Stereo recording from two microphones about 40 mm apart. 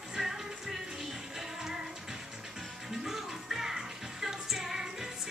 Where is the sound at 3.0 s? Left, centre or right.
Centre.